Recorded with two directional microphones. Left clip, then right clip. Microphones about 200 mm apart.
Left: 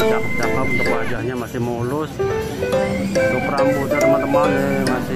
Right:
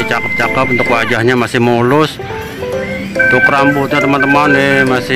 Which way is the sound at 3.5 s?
15° right (ahead or behind).